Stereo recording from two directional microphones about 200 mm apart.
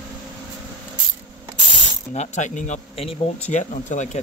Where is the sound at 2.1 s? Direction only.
35° left (ahead or behind).